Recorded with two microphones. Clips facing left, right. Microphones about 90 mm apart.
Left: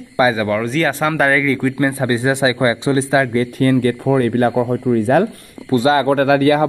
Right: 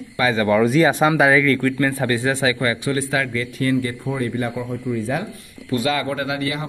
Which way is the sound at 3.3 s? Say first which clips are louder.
Left 7 dB; 45° left (ahead or behind).